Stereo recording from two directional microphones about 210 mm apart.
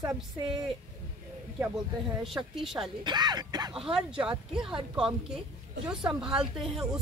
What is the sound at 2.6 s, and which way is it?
Speech, centre (ahead or behind).